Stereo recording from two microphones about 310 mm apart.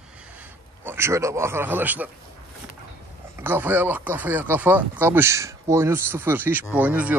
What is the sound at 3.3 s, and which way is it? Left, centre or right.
Speech, centre.